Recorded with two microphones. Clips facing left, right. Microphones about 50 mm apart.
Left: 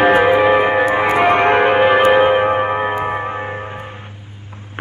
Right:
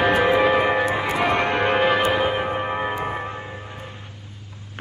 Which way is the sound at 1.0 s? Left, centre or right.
Left.